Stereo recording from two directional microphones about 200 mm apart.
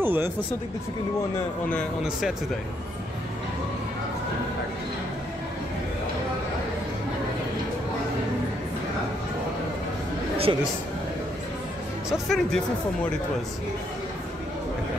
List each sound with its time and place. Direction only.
0.0 s speech: 10° right (ahead or behind)
1.7 s speech: centre (ahead or behind)
10.5 s a man's voice: 25° right (ahead or behind)
12.1 s speech: centre (ahead or behind)